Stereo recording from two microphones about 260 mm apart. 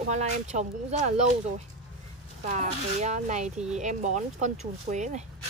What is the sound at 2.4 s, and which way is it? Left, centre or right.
Speech, right.